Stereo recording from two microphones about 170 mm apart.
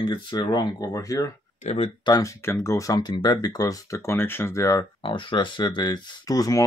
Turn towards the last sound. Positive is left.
turn(degrees=20)  # may be behind; listen again after turning